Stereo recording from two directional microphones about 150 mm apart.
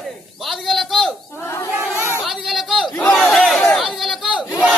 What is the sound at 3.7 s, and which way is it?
Chatter, centre (ahead or behind).